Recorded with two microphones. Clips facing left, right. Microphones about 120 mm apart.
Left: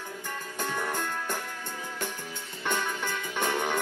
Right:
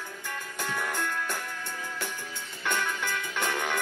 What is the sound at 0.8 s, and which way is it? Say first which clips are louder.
Music: right 2 dB; 30° left (ahead or behind).